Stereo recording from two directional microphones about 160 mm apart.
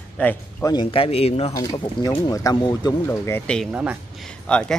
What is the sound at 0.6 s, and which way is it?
Speech, 30° left (ahead or behind).